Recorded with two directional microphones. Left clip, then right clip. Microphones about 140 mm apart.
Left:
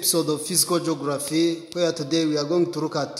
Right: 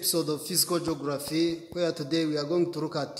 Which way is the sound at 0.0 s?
10° left (ahead or behind).